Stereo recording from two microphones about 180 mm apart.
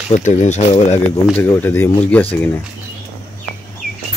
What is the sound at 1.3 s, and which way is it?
Speech, 10° left (ahead or behind).